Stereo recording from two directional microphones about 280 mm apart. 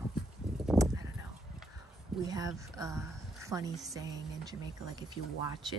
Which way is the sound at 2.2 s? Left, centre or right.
Centre.